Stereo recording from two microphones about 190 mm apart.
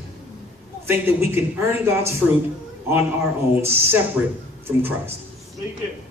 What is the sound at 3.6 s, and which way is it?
A man's voice, 10° right (ahead or behind).